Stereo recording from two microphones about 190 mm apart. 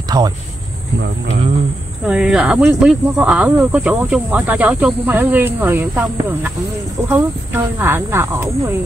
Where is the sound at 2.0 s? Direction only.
Centre (ahead or behind).